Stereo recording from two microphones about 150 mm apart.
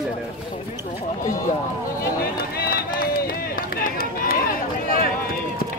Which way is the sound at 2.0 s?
90° left.